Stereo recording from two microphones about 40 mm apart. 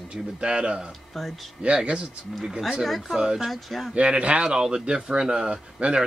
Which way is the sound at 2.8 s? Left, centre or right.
Centre.